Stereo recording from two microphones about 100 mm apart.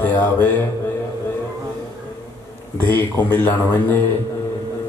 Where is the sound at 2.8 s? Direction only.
15° left (ahead or behind).